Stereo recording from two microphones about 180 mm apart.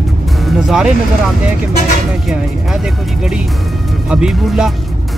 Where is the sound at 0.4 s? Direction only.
Centre (ahead or behind).